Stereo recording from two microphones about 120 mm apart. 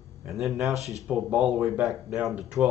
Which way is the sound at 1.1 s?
10° right (ahead or behind).